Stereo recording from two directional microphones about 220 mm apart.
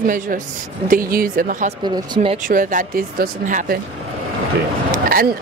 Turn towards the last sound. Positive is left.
turn(degrees=-40)  # may be behind; listen again after turning